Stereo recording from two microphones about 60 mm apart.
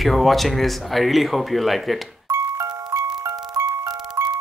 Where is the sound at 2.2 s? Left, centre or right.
Right.